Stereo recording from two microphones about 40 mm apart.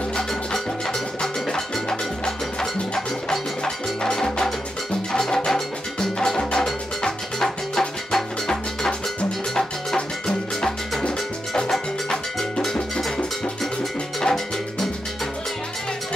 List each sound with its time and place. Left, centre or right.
0.3 s music: centre
8.1 s cowbell: centre
9.9 s music: centre